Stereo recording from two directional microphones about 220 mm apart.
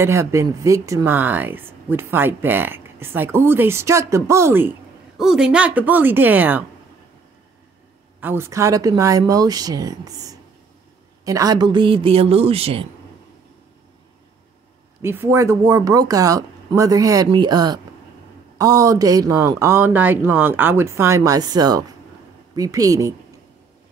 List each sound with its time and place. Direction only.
0.0 s speech: 10° right (ahead or behind)
8.2 s speech: 10° right (ahead or behind); by 12.8 s 25° right (ahead or behind)
15.0 s speech: 10° right (ahead or behind)